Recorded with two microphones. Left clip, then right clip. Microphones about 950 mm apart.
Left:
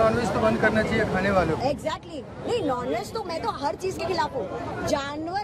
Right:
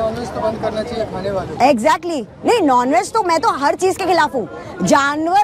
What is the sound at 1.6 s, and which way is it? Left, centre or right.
Speech, right.